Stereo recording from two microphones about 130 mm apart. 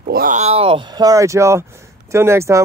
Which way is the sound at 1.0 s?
25° right (ahead or behind).